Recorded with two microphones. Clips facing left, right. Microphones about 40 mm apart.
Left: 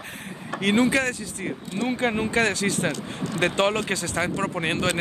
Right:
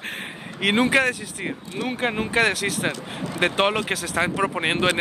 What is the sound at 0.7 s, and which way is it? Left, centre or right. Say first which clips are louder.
Speech: right 2 dB; right.